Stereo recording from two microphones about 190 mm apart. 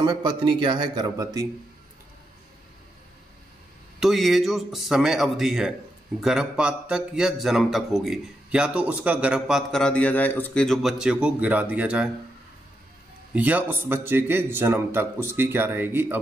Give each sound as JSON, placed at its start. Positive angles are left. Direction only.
{"t": 0.0, "sound": "speech", "side_deg": -25}
{"t": 4.0, "sound": "a man's voice", "side_deg": 0}
{"t": 13.3, "sound": "a man's voice", "side_deg": -10}